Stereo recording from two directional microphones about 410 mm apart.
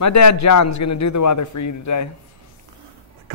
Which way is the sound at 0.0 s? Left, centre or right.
Left.